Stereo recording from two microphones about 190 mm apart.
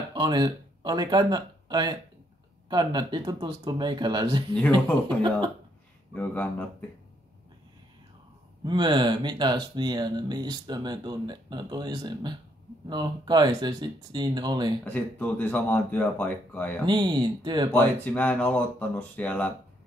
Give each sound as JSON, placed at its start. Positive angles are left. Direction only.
{"t": 0.1, "sound": "speech", "side_deg": -20}
{"t": 6.1, "sound": "speech", "side_deg": 10}
{"t": 8.6, "sound": "speech", "side_deg": -25}
{"t": 14.9, "sound": "speech", "side_deg": 10}
{"t": 16.8, "sound": "speech", "side_deg": -25}
{"t": 17.7, "sound": "speech", "side_deg": 10}